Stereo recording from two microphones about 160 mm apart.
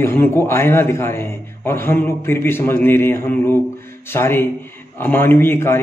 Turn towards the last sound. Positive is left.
turn(degrees=15)  # may be behind; listen again after turning